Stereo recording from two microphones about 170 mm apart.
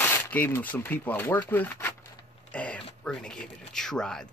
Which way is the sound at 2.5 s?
5° left (ahead or behind).